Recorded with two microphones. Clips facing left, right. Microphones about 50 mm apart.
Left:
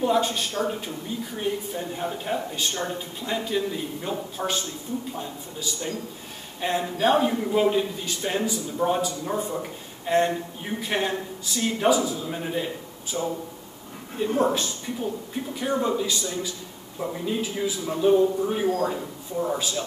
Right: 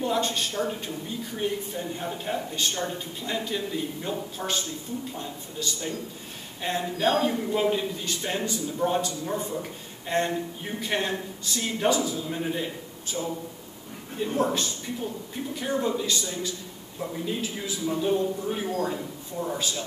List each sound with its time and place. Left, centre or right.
0.0 s speech: centre
13.1 s speech: centre